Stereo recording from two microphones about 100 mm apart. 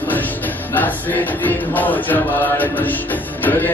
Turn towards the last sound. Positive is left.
turn(degrees=20)  # may be behind; listen again after turning